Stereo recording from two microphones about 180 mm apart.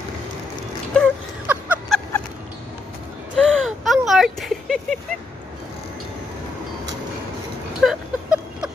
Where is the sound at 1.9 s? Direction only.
Centre (ahead or behind).